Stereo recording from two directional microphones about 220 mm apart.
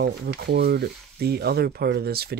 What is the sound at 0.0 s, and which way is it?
Speech, 45° right (ahead or behind).